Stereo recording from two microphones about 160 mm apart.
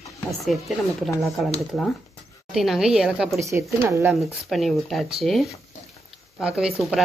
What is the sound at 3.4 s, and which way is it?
Speech, 15° right (ahead or behind).